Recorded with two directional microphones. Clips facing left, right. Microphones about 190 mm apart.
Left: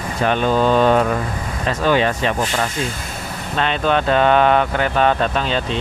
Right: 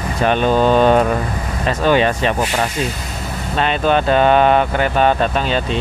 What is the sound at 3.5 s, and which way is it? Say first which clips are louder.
Speech: right 2 dB; 5° right (ahead or behind).